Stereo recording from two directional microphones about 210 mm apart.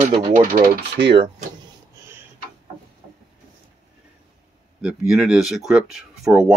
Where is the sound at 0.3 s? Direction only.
40° right (ahead or behind).